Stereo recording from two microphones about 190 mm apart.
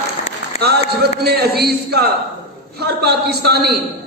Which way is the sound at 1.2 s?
55° right (ahead or behind).